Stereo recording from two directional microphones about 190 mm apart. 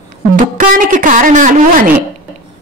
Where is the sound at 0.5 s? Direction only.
45° right (ahead or behind).